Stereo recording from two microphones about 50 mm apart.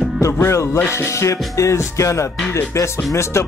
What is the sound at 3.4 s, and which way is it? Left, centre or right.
Speech, left.